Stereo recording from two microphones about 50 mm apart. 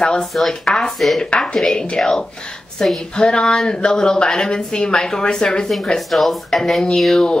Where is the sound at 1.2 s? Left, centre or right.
Centre.